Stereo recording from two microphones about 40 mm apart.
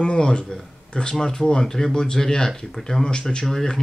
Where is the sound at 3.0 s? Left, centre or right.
Left.